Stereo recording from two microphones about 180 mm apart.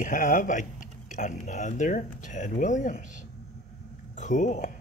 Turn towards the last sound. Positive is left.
turn(degrees=45)  # may be behind; listen again after turning